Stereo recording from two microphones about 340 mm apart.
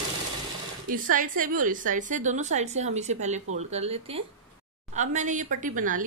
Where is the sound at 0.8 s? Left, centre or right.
Right.